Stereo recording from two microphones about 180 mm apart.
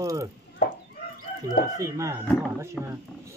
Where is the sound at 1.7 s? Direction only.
15° right (ahead or behind).